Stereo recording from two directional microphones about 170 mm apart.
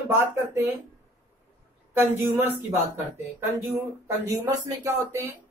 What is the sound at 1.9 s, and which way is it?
A woman's voice, 15° right (ahead or behind).